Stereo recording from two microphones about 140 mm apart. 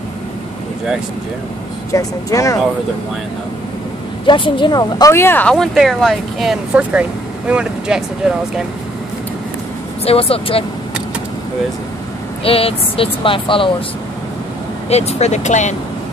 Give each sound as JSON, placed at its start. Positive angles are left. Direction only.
{"t": 1.9, "sound": "speech", "side_deg": 25}
{"t": 4.3, "sound": "speech", "side_deg": 35}
{"t": 5.1, "sound": "speech", "side_deg": 15}
{"t": 10.0, "sound": "speech", "side_deg": 45}
{"t": 12.4, "sound": "speech", "side_deg": 40}
{"t": 14.9, "sound": "speech", "side_deg": 50}